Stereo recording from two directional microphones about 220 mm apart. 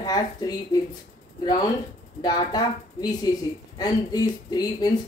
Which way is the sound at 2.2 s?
20° left (ahead or behind).